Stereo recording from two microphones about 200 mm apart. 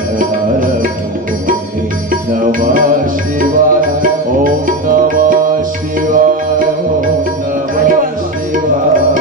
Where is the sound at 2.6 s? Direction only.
40° right (ahead or behind).